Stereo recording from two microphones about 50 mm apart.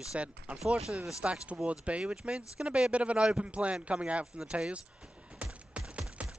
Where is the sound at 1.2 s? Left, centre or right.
Right.